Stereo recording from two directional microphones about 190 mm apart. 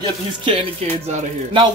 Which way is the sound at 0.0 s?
25° right (ahead or behind).